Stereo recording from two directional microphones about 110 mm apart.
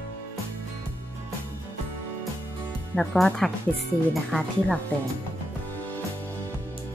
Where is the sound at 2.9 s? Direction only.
5° left (ahead or behind).